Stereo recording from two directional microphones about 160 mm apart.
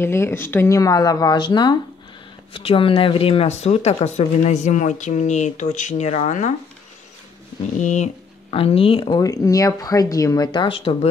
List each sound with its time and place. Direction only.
0.0 s speech: 15° left (ahead or behind); by 6.5 s 45° left (ahead or behind)
7.8 s speech: 45° left (ahead or behind)